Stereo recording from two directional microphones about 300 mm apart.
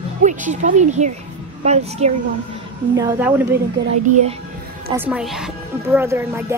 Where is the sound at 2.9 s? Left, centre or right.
Centre.